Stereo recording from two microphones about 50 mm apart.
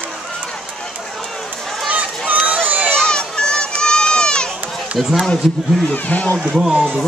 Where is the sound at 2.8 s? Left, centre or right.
Centre.